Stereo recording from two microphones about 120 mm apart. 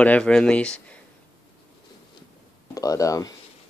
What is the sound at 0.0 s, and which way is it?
Speech, 10° left (ahead or behind).